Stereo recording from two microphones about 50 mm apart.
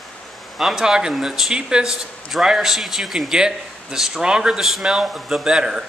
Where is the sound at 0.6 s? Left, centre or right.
Centre.